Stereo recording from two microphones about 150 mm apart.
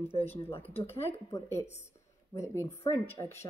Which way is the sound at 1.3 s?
20° left (ahead or behind).